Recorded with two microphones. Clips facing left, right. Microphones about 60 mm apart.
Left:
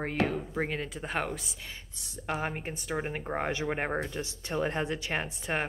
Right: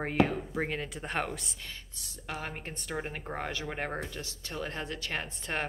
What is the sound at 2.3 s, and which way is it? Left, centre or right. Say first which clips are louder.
Speech: left 5 dB; centre.